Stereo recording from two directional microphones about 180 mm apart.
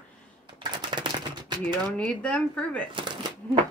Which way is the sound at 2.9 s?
25° right (ahead or behind).